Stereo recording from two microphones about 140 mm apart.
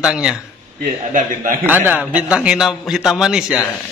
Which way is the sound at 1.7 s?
10° right (ahead or behind).